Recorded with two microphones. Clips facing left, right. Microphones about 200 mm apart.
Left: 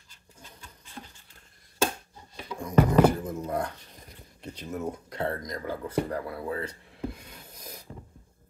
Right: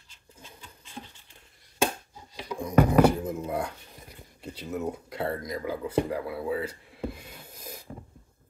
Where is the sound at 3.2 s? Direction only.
10° right (ahead or behind).